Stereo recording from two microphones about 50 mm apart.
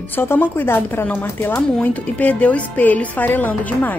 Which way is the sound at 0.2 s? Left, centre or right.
Left.